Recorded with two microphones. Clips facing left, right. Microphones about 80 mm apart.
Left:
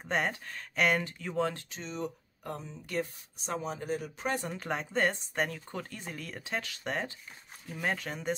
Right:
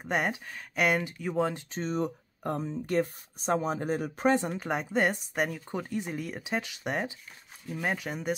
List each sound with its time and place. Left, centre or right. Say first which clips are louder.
0.0 s speech: right 2 dB; centre
1.7 s speech: right 7 dB; right
4.5 s speech: right 4 dB; centre